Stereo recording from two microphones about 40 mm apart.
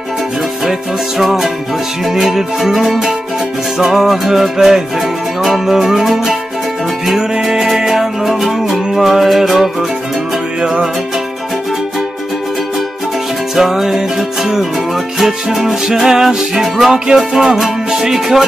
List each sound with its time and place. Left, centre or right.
0.7 s music: centre
7.5 s music: centre
13.6 s music: centre